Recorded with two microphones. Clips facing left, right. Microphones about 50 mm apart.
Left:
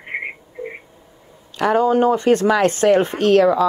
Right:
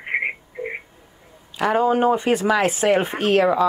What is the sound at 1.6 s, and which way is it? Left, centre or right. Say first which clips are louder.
Speech: left 3 dB; centre.